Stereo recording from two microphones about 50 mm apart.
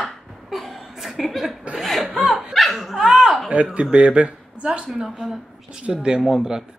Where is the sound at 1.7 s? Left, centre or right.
Centre.